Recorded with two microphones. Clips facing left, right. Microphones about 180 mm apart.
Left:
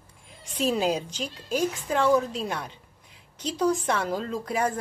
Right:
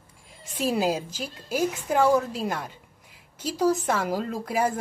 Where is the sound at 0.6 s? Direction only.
10° right (ahead or behind).